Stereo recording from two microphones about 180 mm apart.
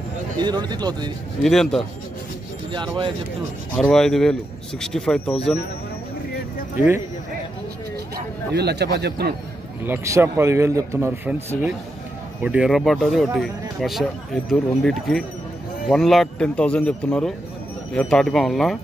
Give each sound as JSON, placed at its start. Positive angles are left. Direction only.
{"t": 0.4, "sound": "speech", "side_deg": -25}
{"t": 1.4, "sound": "speech", "side_deg": 0}
{"t": 2.7, "sound": "speech", "side_deg": -25}
{"t": 3.7, "sound": "speech", "side_deg": 5}
{"t": 8.5, "sound": "a man's voice", "side_deg": -65}
{"t": 9.8, "sound": "speech", "side_deg": -15}